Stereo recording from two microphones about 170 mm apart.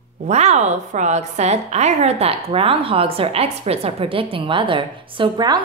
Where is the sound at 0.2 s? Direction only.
40° right (ahead or behind).